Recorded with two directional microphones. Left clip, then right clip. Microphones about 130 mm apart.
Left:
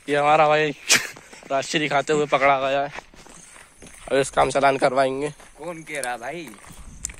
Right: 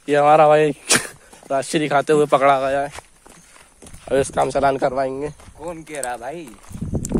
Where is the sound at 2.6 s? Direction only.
70° right (ahead or behind).